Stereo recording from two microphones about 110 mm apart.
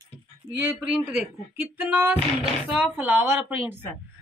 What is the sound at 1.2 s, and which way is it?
A woman's voice, 20° right (ahead or behind).